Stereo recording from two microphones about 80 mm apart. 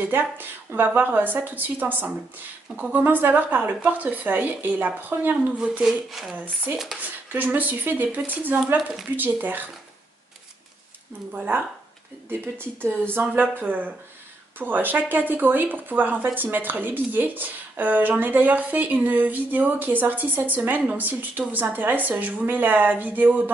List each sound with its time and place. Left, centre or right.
0.1 s a woman's voice: right
5.9 s speech: centre
6.3 s a woman's voice: right
11.3 s a woman's voice: right